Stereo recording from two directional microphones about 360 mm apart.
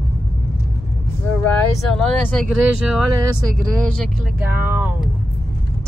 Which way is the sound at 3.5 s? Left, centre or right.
Right.